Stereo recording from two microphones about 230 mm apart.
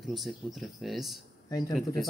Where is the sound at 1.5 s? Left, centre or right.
Centre.